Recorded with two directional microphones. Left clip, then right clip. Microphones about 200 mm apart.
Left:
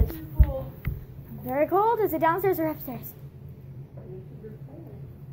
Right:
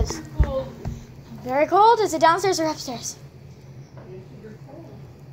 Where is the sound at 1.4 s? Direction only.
Centre (ahead or behind).